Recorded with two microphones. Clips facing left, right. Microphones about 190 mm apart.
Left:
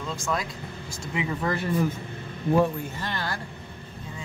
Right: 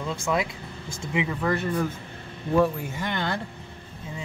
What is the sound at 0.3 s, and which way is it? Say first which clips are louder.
Speech: right 4 dB; 15° right (ahead or behind).